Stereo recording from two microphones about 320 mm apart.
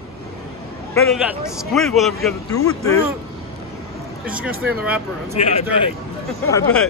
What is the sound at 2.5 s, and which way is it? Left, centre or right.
Speech, centre.